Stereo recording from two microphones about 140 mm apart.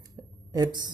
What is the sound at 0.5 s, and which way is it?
Speech, 30° right (ahead or behind).